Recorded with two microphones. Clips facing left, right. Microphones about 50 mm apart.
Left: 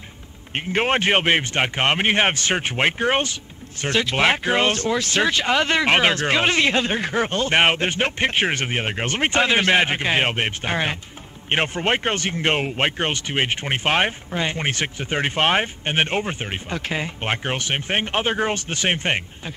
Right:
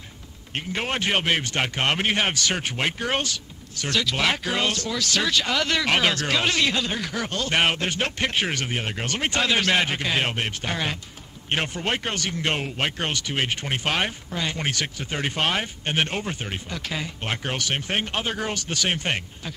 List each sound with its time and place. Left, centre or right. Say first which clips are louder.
0.6 s speech: left 6 dB; left